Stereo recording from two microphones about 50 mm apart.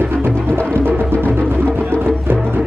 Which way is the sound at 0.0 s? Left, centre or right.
Right.